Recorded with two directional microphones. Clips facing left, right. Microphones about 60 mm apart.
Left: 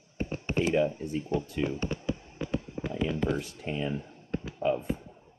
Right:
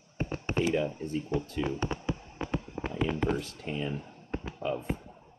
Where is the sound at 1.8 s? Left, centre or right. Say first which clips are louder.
Even; right.